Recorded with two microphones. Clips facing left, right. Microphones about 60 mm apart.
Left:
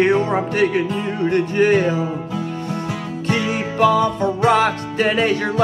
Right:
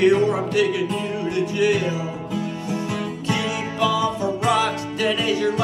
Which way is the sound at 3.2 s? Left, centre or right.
Left.